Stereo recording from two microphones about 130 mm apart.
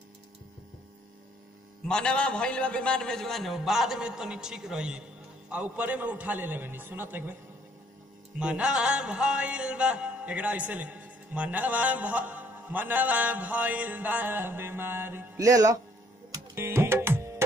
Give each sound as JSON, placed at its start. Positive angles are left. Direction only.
{"t": 1.9, "sound": "a man's voice", "side_deg": 5}
{"t": 5.5, "sound": "music", "side_deg": -10}
{"t": 8.4, "sound": "music", "side_deg": -5}
{"t": 15.3, "sound": "speech", "side_deg": -25}
{"t": 16.5, "sound": "music", "side_deg": -20}